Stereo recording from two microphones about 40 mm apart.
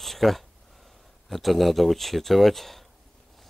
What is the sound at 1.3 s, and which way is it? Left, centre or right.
Speech, centre.